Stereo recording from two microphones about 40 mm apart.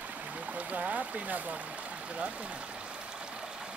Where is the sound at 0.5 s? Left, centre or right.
Right.